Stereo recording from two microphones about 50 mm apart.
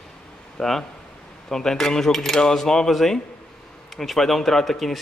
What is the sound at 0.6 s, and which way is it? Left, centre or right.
Speech, centre.